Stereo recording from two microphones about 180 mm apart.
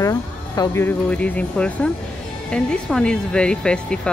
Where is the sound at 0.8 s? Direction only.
10° left (ahead or behind).